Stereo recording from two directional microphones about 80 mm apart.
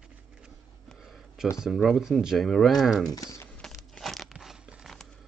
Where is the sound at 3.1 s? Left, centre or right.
Left.